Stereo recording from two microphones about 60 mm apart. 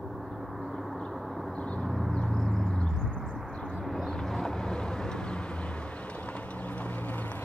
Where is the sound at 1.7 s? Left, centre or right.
Centre.